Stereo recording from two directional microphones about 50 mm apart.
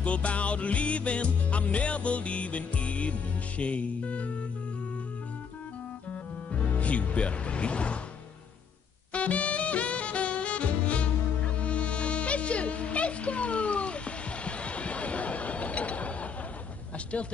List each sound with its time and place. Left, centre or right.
0.0 s music: left
6.5 s music: left
9.1 s saxophone: left